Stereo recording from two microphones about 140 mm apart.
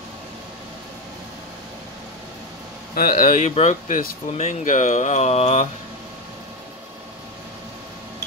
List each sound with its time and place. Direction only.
2.9 s speech: 90° left
4.3 s speech: 50° left (ahead or behind)